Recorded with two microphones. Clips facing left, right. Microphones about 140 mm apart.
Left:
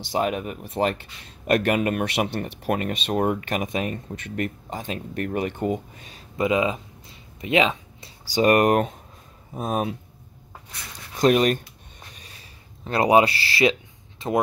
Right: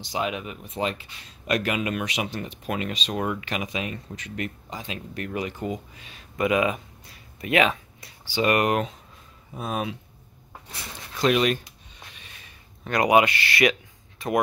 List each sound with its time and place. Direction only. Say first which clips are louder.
0.1 s speech: left 4 dB; 45° left (ahead or behind)
0.7 s speech: left 5 dB; 60° left (ahead or behind); by 6.2 s 40° left (ahead or behind)
6.3 s a sound: left 1 dB; 25° left (ahead or behind)
8.3 s speech: left 4 dB; 40° left (ahead or behind)
11.1 s speech: left 3 dB; 45° left (ahead or behind)
12.1 s a sound: left 2 dB; 40° left (ahead or behind)
12.8 s speech: left 2 dB; 30° left (ahead or behind)